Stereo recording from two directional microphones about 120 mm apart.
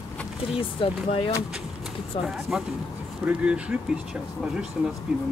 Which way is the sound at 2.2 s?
5° right (ahead or behind).